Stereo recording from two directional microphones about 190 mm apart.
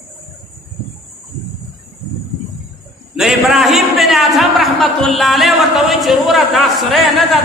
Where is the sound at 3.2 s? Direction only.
Centre (ahead or behind).